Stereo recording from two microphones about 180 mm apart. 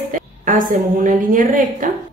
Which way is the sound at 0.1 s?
45° right (ahead or behind).